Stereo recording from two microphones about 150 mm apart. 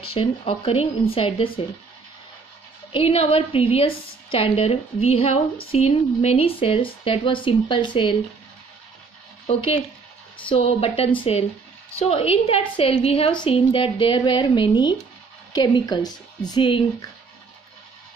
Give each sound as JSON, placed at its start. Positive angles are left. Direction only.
{"t": 0.1, "sound": "a woman's voice", "side_deg": 35}
{"t": 2.9, "sound": "a woman's voice", "side_deg": 40}
{"t": 9.5, "sound": "a woman's voice", "side_deg": 40}